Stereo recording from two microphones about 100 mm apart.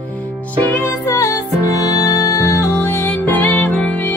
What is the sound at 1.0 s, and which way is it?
Music, 30° left (ahead or behind).